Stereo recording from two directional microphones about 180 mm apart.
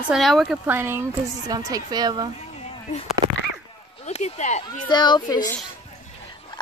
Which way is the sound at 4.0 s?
40° left (ahead or behind).